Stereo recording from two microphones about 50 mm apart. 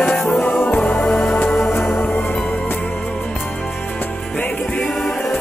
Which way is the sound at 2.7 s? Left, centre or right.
Left.